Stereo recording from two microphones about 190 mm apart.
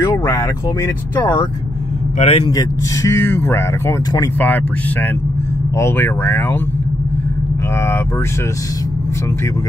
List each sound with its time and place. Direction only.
0.0 s vehicle: 15° left (ahead or behind)
1.2 s speech: 15° left (ahead or behind)
2.1 s a man's voice: 30° left (ahead or behind)
2.5 s speech: 15° left (ahead or behind)
5.8 s speech: 10° left (ahead or behind)